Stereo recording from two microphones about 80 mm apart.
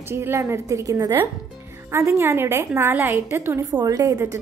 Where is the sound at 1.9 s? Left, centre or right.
Right.